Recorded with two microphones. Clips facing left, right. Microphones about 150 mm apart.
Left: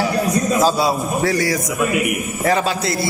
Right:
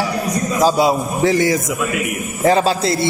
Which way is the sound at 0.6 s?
20° right (ahead or behind).